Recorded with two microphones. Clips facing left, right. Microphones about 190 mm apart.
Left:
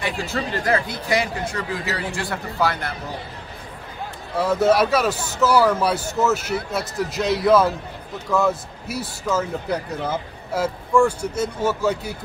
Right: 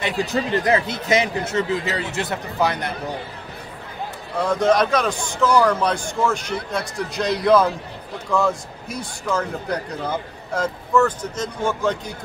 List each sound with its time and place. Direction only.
0.0 s speech: 20° right (ahead or behind)
4.4 s a man's voice: 5° left (ahead or behind)